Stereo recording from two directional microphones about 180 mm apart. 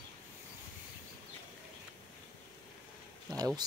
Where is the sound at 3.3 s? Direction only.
20° right (ahead or behind).